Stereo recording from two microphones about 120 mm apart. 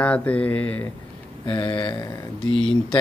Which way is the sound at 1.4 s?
45° left (ahead or behind).